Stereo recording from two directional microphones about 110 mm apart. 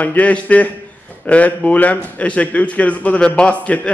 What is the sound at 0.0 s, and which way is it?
A man's voice, 15° left (ahead or behind).